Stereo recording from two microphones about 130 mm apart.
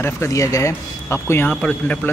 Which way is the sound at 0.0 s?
25° left (ahead or behind).